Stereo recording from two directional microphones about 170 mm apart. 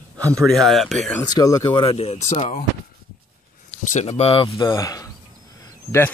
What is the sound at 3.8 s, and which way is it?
Speech, 40° left (ahead or behind).